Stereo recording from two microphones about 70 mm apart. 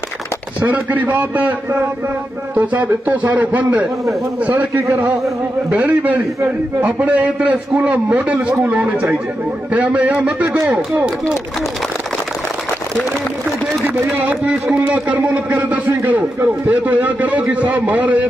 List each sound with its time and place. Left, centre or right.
0.6 s a man's voice: right
4.8 s speech: right
5.7 s a man's voice: right
13.8 s a man's voice: right